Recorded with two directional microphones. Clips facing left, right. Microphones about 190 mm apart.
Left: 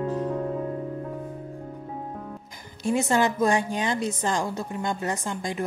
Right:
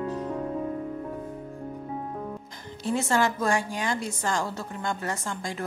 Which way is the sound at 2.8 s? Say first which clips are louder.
Left 2 dB; 15° left (ahead or behind).